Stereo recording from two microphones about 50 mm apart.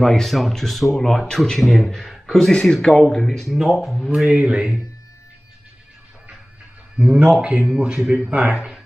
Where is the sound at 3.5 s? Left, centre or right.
Centre.